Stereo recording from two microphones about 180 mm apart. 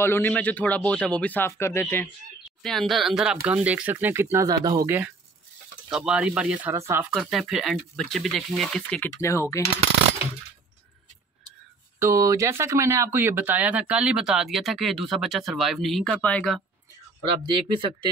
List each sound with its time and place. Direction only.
0.0 s a man's voice: 10° left (ahead or behind)
2.6 s speech: centre (ahead or behind); by 4.9 s 20° right (ahead or behind)
5.9 s speech: 5° right (ahead or behind); by 9.7 s 15° left (ahead or behind)
12.0 s speech: 15° right (ahead or behind); by 16.6 s 5° left (ahead or behind)
17.5 s speech: 25° right (ahead or behind)